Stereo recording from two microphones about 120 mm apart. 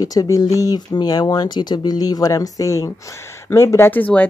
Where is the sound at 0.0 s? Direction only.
30° left (ahead or behind).